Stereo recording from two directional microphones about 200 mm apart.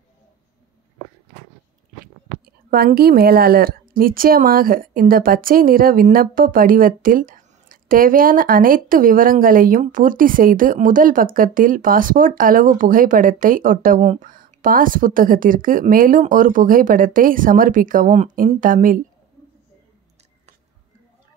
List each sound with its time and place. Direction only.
2.7 s a woman's voice: 50° right (ahead or behind)